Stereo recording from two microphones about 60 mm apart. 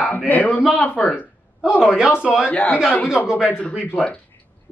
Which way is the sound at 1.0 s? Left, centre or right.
Centre.